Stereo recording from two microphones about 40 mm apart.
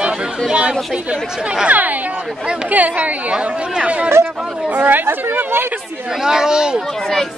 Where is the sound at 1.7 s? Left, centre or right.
Right.